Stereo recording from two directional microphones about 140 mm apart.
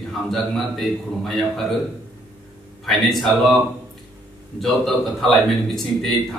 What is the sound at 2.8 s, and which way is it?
A man's voice, centre (ahead or behind).